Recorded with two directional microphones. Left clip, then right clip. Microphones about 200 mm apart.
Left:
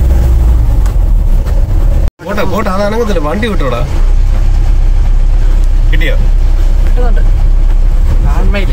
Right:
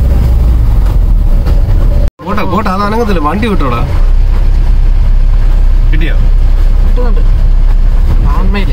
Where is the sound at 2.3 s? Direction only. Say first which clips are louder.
Right 1 dB; 25° right (ahead or behind).